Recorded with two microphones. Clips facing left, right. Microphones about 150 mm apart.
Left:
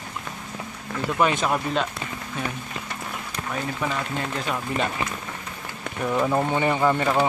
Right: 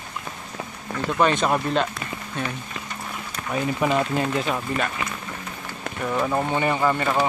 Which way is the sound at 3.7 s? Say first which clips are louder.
Right 8 dB; 20° right (ahead or behind).